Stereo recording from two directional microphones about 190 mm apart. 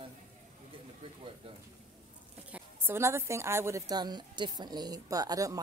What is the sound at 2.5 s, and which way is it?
A woman's voice, 15° right (ahead or behind).